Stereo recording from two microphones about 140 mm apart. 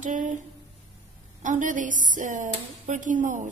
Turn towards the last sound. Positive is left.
turn(degrees=-65)  # may be behind; listen again after turning